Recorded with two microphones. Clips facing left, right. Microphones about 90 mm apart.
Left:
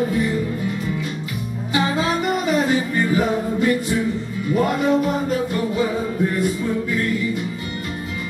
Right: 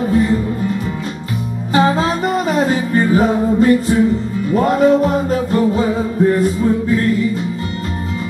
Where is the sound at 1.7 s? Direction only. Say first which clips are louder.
Right 6 dB; 35° right (ahead or behind).